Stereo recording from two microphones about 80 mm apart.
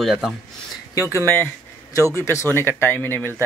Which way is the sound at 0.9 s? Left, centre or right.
Left.